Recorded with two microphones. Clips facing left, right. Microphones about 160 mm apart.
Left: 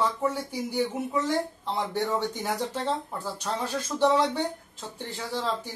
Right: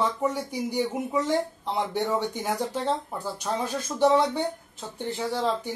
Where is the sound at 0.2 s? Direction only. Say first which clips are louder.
Right 1 dB; 15° right (ahead or behind).